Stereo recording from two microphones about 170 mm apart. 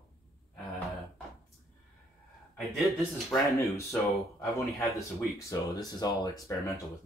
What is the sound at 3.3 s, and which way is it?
Speech, 15° left (ahead or behind).